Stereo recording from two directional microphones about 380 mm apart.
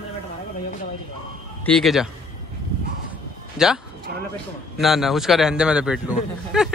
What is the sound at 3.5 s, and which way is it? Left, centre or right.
Speech, centre.